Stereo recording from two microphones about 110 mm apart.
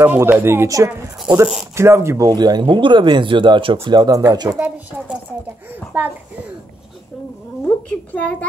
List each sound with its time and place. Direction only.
0.0 s speech: 15° right (ahead or behind); by 3.9 s 55° right (ahead or behind)
3.9 s speech: 35° right (ahead or behind)
4.5 s speech: 15° right (ahead or behind)
7.6 s a woman's voice: 15° left (ahead or behind)